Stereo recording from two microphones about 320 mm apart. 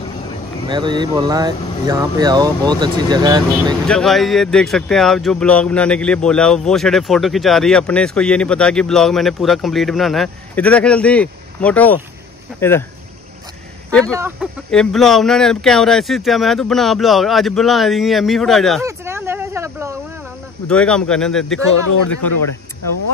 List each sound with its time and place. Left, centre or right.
0.7 s speech: centre
3.8 s speech: centre
13.8 s speech: centre
18.8 s a sound: centre
20.6 s speech: centre
21.9 s speech: left